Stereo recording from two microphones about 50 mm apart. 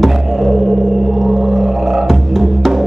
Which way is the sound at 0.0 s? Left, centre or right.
Centre.